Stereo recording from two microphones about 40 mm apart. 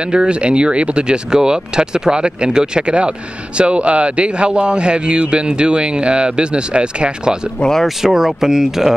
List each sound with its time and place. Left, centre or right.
0.1 s speech: right
8.0 s speech: centre